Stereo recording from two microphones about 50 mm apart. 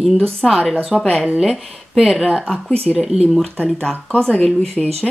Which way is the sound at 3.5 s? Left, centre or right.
Left.